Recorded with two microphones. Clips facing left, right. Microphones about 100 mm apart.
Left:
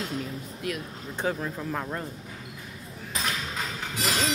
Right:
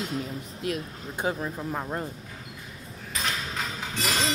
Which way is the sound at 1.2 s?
15° right (ahead or behind).